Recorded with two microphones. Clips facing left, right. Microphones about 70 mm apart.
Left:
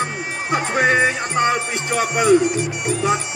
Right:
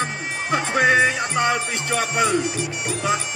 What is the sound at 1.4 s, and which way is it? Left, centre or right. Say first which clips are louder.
Music: left 2 dB; left.